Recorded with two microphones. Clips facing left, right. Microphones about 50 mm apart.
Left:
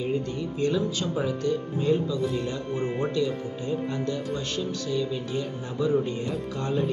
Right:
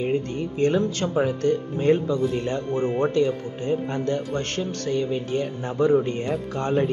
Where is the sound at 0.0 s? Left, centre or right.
Right.